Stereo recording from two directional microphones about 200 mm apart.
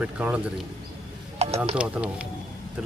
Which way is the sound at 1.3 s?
30° right (ahead or behind).